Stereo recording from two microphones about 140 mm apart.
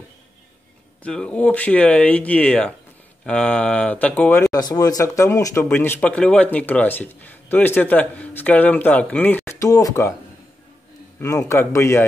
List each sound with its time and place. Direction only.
1.0 s speech: 5° left (ahead or behind)
4.5 s speech: 25° left (ahead or behind)
11.1 s speech: 20° left (ahead or behind)